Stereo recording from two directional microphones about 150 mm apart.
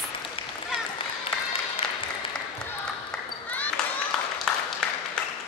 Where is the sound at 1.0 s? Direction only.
35° left (ahead or behind).